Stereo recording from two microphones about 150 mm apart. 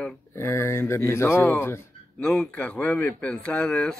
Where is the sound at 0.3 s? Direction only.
15° left (ahead or behind).